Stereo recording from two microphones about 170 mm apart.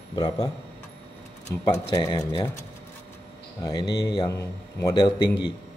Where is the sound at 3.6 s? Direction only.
30° left (ahead or behind).